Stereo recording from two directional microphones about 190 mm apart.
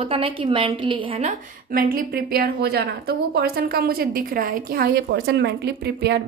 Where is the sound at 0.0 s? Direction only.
30° right (ahead or behind).